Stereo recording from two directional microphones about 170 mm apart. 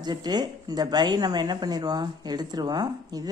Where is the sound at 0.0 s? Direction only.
25° right (ahead or behind).